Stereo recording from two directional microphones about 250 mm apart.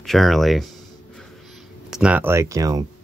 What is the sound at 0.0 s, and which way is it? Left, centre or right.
Speech, centre.